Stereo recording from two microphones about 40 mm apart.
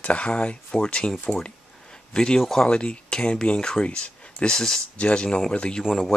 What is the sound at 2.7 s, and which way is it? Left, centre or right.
Speech, left.